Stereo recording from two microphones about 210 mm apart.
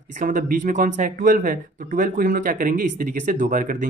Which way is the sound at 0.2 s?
40° right (ahead or behind).